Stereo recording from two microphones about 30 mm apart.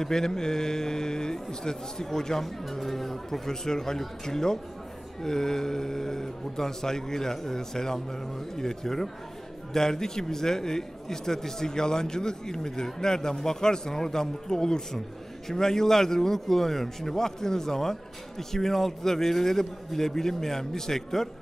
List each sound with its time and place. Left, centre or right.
0.0 s a man's voice: centre
2.4 s a man's voice: centre